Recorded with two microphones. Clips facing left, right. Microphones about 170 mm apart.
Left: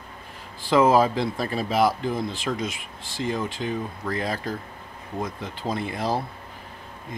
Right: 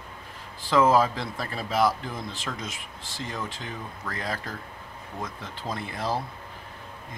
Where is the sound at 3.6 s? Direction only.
15° left (ahead or behind).